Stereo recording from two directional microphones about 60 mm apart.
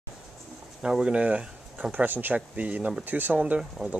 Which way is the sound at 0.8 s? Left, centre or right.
Centre.